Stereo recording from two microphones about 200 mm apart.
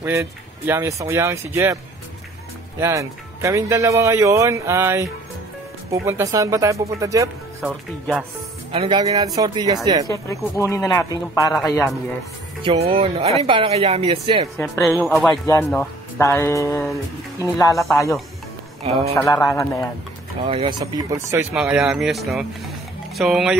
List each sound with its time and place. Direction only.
0.0 s speech: 10° right (ahead or behind)
2.8 s speech: 15° right (ahead or behind)
8.7 s speech: 25° right (ahead or behind)
10.0 s speech: 15° left (ahead or behind)
12.6 s speech: 30° right (ahead or behind)
14.6 s speech: centre (ahead or behind)
15.4 s speech: 15° left (ahead or behind)
18.8 s a man's voice: 30° right (ahead or behind)
19.3 s speech: 15° left (ahead or behind)
20.4 s speech: 25° right (ahead or behind)
21.5 s speech: 5° right (ahead or behind)